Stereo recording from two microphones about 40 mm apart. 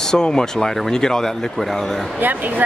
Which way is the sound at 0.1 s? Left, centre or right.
Centre.